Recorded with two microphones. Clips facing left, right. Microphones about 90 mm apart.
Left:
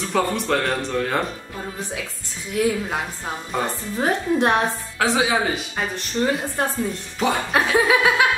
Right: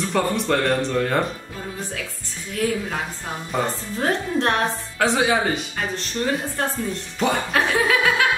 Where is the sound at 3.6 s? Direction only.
15° left (ahead or behind).